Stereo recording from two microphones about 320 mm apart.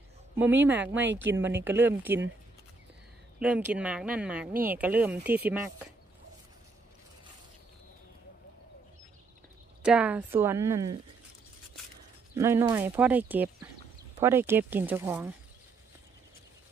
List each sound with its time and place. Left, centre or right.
0.4 s a woman's voice: centre
3.3 s speech: centre
9.8 s a woman's voice: centre
12.4 s a woman's voice: centre